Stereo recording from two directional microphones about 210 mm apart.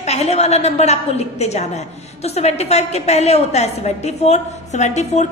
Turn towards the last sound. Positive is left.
turn(degrees=35)  # may be behind; listen again after turning